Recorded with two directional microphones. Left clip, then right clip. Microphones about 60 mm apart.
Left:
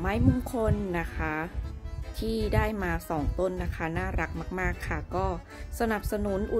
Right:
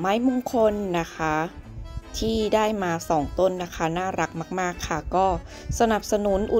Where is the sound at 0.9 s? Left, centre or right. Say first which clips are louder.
Right 7 dB; right.